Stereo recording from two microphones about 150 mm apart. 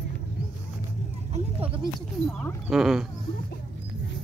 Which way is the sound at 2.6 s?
Centre (ahead or behind).